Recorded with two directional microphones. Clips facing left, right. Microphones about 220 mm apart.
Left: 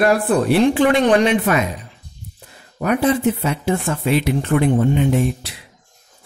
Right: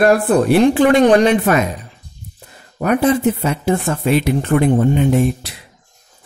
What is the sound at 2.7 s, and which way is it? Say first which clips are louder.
Speech: right 3 dB; 45° right (ahead or behind).